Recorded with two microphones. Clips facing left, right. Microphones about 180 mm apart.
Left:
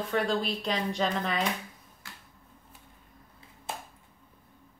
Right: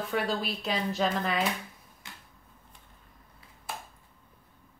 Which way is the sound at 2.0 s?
20° right (ahead or behind).